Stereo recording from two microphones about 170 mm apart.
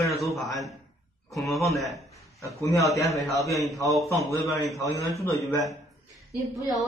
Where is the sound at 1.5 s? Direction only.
20° left (ahead or behind).